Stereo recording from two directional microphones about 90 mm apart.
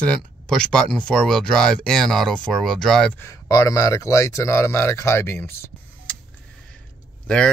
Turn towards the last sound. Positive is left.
turn(degrees=10)  # may be behind; listen again after turning